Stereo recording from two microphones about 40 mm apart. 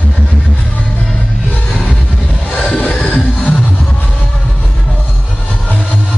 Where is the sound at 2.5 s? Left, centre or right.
Left.